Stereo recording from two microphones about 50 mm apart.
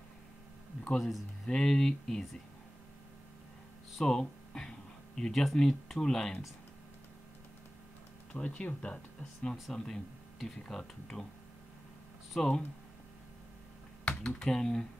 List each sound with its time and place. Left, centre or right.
0.9 s speech: centre
4.0 s speech: centre
8.3 s speech: left; by 11.2 s centre
12.4 s speech: centre
14.0 s speech: centre